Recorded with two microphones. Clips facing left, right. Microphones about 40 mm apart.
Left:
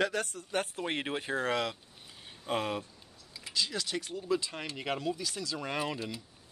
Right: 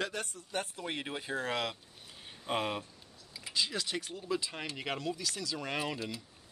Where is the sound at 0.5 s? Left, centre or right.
Left.